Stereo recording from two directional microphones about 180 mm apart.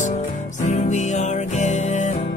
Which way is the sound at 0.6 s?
40° left (ahead or behind).